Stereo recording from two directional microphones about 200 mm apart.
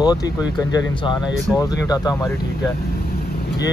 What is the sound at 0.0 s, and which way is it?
Speech, 20° left (ahead or behind).